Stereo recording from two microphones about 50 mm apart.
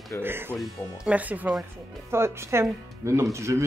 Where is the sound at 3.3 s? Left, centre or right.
Right.